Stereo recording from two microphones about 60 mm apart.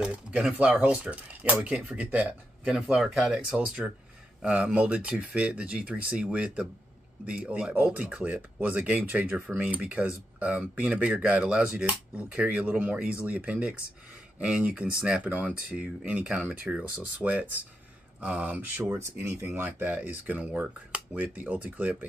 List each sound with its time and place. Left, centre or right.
0.0 s speech: centre
2.6 s speech: centre
3.3 s speech: centre
18.9 s speech: right
20.4 s speech: centre